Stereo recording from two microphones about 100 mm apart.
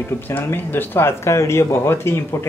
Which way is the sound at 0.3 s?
20° left (ahead or behind).